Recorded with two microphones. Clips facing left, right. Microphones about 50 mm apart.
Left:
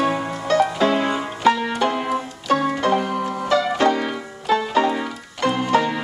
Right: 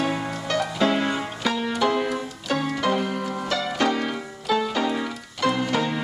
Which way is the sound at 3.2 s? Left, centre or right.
Centre.